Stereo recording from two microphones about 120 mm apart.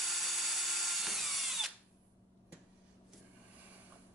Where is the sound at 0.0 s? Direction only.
Centre (ahead or behind).